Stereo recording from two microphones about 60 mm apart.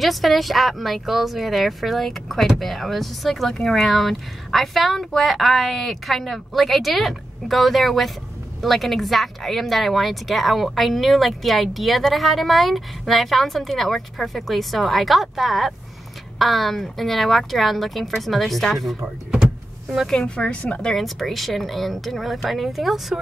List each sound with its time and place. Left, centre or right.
0.0 s speech: centre
19.3 s vehicle: centre
20.1 s speech: centre
20.9 s speech: centre